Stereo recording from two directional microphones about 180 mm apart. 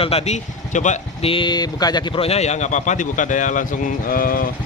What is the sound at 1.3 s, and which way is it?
A man's voice, 25° left (ahead or behind).